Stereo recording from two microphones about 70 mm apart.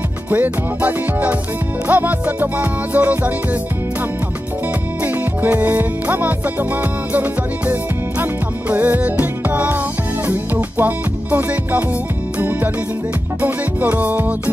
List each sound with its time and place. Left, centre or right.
0.3 s music: right
5.0 s music: right